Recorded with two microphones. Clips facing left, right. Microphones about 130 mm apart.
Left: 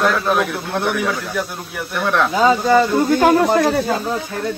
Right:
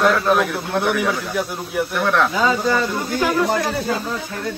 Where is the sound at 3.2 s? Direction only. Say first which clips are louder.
Left 3 dB; 55° left (ahead or behind).